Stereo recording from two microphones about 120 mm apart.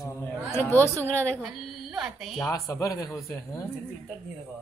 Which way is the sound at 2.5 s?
30° left (ahead or behind).